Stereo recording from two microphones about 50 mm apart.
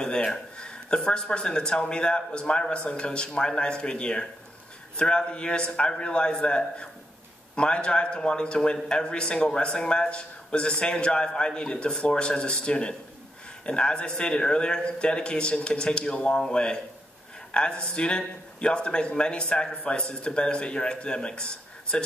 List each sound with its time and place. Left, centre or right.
0.0 s speech: centre